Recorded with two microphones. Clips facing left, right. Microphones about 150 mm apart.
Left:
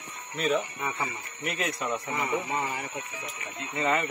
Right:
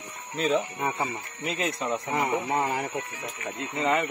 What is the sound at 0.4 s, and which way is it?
Speech, 25° right (ahead or behind).